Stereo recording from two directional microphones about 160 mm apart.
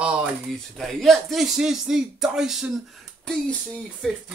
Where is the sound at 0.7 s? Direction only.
Centre (ahead or behind).